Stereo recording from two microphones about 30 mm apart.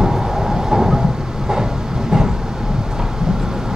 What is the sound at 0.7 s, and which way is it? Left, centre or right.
Train, centre.